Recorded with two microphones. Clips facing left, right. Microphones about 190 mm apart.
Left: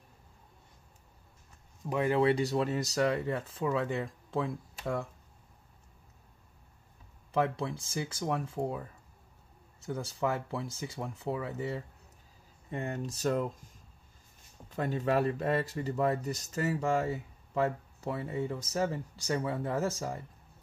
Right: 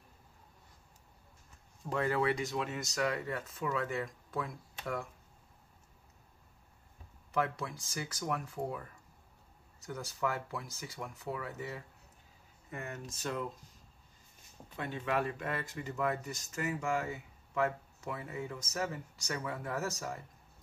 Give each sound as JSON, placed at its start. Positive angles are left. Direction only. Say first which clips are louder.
{"t": 1.9, "sound": "speech", "louder": "left 5 dB", "side_deg": 15}
{"t": 7.3, "sound": "speech", "louder": "left 4 dB", "side_deg": 25}
{"t": 14.8, "sound": "speech", "louder": "left 6 dB", "side_deg": 40}